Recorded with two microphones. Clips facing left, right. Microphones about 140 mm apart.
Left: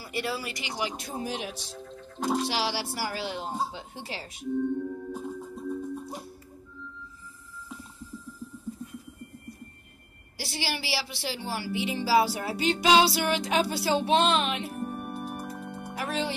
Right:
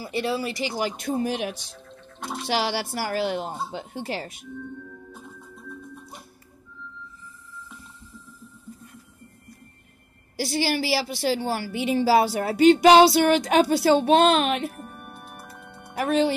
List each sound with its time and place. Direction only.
0.0 s speech: 25° right (ahead or behind)
0.7 s speech: 50° right (ahead or behind)
5.4 s music: 35° left (ahead or behind)
10.3 s a woman's voice: 50° right (ahead or behind)
14.9 s music: 35° left (ahead or behind)
16.0 s speech: 55° right (ahead or behind)